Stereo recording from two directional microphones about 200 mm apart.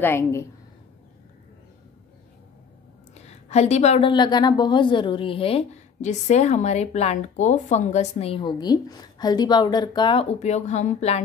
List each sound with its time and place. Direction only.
0.0 s a woman's voice: 10° left (ahead or behind)
3.2 s a woman's voice: 35° left (ahead or behind)
10.4 s speech: 35° left (ahead or behind)